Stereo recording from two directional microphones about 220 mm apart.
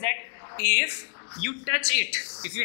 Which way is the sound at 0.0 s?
15° left (ahead or behind).